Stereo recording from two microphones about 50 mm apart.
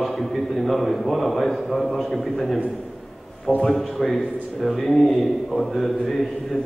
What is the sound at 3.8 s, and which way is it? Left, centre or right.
A man's voice, centre.